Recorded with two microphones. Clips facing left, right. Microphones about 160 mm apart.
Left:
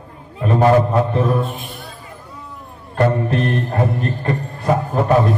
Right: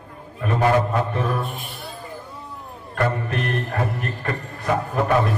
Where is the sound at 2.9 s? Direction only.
30° left (ahead or behind).